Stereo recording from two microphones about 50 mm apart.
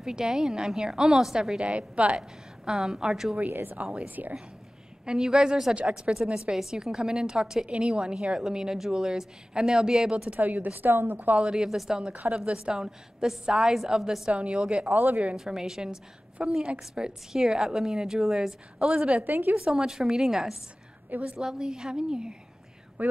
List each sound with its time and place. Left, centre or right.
0.0 s a woman's voice: centre
1.7 s a woman's voice: right
3.4 s a woman's voice: right
4.1 s a woman's voice: right
5.0 s a woman's voice: centre
10.3 s a woman's voice: right
10.9 s a woman's voice: right
11.1 s a woman's voice: right
11.4 s a woman's voice: centre
16.4 s a woman's voice: right; by 18.9 s centre
18.9 s a woman's voice: right
19.2 s a woman's voice: right
19.5 s a woman's voice: centre
23.0 s speech: right